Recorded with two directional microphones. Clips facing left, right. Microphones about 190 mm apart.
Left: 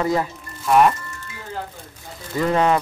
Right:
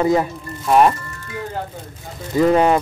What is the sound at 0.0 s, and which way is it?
Speech, 20° right (ahead or behind).